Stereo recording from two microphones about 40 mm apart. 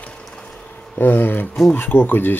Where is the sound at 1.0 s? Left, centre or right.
Left.